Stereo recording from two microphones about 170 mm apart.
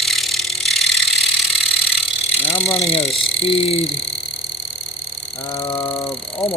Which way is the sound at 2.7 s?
35° left (ahead or behind).